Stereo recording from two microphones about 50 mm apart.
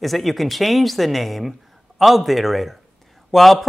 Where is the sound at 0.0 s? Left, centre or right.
Centre.